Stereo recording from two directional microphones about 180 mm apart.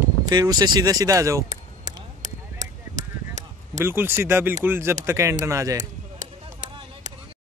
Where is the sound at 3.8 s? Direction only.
10° right (ahead or behind).